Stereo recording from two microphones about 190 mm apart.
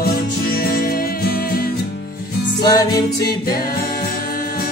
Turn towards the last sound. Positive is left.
turn(degrees=20)  # may be behind; listen again after turning